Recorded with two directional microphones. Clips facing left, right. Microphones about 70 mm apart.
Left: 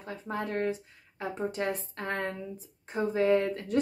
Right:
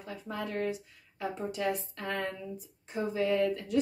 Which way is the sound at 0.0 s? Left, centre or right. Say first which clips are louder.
Left 3 dB; left.